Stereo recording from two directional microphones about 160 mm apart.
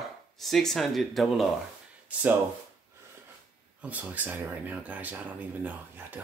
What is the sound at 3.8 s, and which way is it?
Speech, 10° right (ahead or behind).